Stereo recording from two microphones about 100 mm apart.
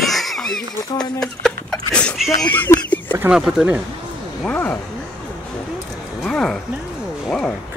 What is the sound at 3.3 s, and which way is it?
Speech, 5° right (ahead or behind).